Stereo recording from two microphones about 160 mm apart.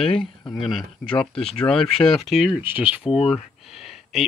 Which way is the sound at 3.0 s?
40° left (ahead or behind).